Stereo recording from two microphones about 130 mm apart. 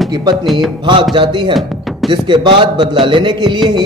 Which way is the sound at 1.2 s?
40° right (ahead or behind).